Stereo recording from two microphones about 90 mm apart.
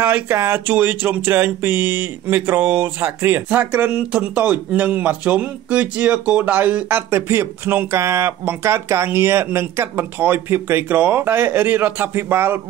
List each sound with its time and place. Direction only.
0.0 s speech: 25° right (ahead or behind)